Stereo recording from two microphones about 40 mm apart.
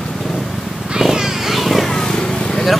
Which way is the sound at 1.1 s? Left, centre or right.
Centre.